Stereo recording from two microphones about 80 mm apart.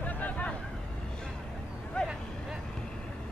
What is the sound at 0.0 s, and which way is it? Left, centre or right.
Vehicle, centre.